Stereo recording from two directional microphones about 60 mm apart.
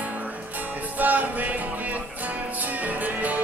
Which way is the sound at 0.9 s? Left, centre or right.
Right.